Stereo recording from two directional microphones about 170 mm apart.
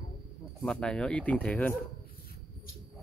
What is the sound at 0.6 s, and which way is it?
Speech, 5° left (ahead or behind).